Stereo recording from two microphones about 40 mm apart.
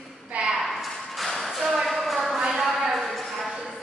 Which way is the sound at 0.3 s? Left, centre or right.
Right.